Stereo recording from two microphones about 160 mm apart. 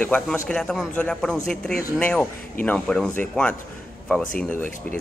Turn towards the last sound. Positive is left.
turn(degrees=5)  # may be behind; listen again after turning